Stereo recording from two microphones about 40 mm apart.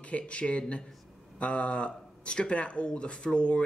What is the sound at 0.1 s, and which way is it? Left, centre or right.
Speech, left.